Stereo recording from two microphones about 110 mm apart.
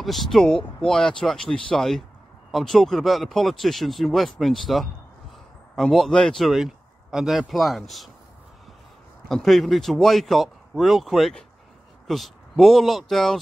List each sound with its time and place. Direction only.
0.0 s speech: centre (ahead or behind)
9.3 s speech: centre (ahead or behind)